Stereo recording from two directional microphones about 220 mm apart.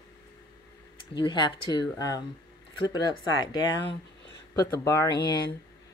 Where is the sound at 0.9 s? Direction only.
20° left (ahead or behind).